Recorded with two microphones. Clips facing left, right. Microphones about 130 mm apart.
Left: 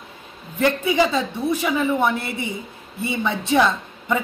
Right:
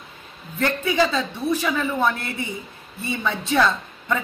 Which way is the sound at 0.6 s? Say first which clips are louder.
Left 2 dB; 15° left (ahead or behind).